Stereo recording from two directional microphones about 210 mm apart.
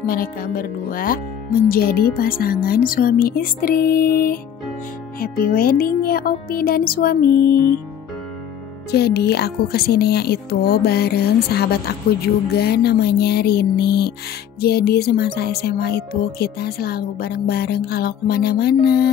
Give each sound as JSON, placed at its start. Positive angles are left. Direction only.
{"t": 0.0, "sound": "speech", "side_deg": 40}
{"t": 8.9, "sound": "speech", "side_deg": 50}